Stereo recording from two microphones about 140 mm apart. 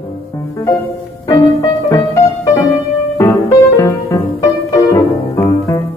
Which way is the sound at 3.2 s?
20° left (ahead or behind).